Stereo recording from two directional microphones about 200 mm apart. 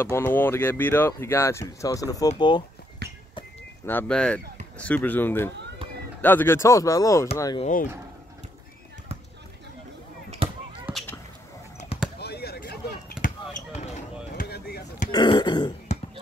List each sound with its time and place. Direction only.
0.0 s speech: 10° left (ahead or behind)
3.0 s horse: 55° right (ahead or behind)
3.8 s speech: 5° left (ahead or behind)
10.4 s a sound: 30° right (ahead or behind)
10.9 s whip: centre (ahead or behind)
12.2 s a sound: 50° left (ahead or behind)
13.7 s a sound: 35° left (ahead or behind)
14.4 s basketball bounce: 50° left (ahead or behind)
15.0 s throat clearing: 20° left (ahead or behind)